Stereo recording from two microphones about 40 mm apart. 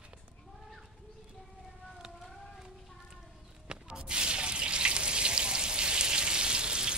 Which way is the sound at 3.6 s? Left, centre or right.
Centre.